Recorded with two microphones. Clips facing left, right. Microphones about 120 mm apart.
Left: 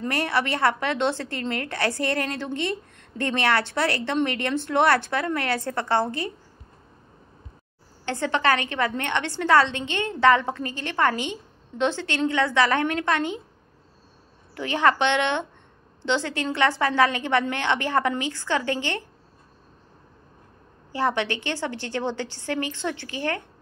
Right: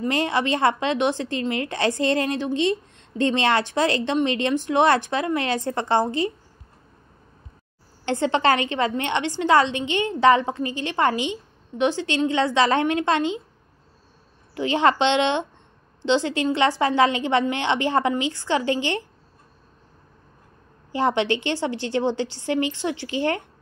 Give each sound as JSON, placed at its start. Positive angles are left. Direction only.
{"t": 0.0, "sound": "a woman's voice", "side_deg": -20}
{"t": 8.0, "sound": "a woman's voice", "side_deg": -25}
{"t": 14.5, "sound": "a woman's voice", "side_deg": -20}
{"t": 20.9, "sound": "a woman's voice", "side_deg": -20}